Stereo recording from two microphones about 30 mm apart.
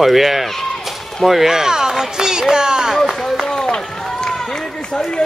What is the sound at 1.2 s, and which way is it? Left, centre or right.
Speech, centre.